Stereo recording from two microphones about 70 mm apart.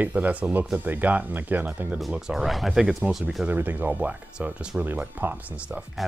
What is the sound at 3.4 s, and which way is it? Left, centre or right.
Speech, right.